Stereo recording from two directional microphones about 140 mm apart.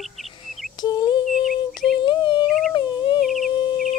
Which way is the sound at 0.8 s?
30° left (ahead or behind).